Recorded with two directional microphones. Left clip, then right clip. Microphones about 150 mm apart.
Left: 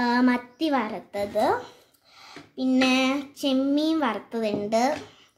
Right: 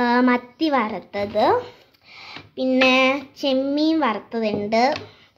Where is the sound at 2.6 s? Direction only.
35° right (ahead or behind); by 4.9 s 15° right (ahead or behind).